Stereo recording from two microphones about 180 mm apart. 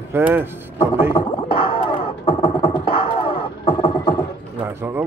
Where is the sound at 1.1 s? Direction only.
30° left (ahead or behind).